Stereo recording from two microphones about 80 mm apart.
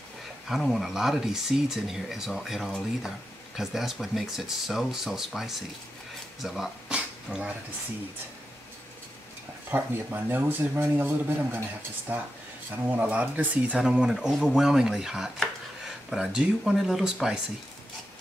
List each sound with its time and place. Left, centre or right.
0.5 s speech: centre
6.9 s a sound: centre
9.7 s a man's voice: right; by 17.4 s centre